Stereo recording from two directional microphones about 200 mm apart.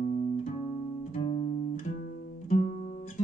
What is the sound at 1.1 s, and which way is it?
Music, 35° left (ahead or behind).